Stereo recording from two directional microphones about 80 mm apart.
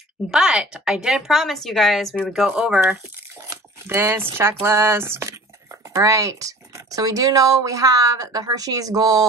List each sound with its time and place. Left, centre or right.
0.3 s a woman's voice: centre
3.8 s speech: right
5.9 s speech: right